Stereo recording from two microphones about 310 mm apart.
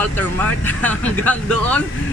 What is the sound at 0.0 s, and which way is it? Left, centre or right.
Speech, centre.